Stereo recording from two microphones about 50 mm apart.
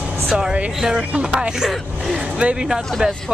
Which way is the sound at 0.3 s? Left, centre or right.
Centre.